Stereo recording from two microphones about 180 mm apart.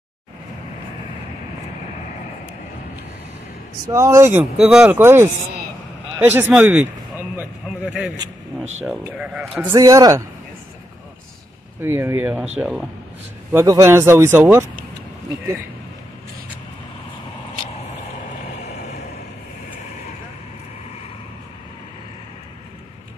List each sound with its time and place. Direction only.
3.8 s speech: 15° right (ahead or behind)
4.6 s speech: 5° right (ahead or behind)
9.8 s speech: 20° right (ahead or behind)
11.8 s speech: 15° right (ahead or behind)
12.5 s speech: centre (ahead or behind)
13.5 s speech: 15° right (ahead or behind)